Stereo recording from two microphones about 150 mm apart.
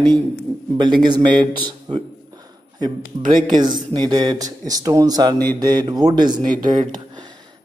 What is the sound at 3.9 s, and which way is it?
Speech, 30° right (ahead or behind).